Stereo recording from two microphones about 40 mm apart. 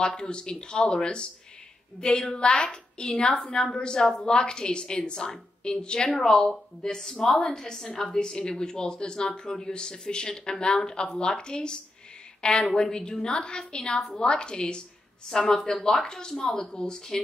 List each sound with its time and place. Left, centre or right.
0.0 s a woman's voice: left